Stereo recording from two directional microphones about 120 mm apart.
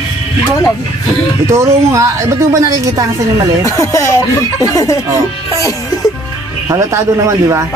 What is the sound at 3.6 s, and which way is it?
Speech, 25° left (ahead or behind).